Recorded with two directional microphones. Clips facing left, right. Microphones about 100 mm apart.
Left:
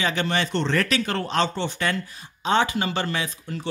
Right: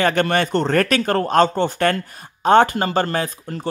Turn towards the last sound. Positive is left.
turn(degrees=-45)  # may be behind; listen again after turning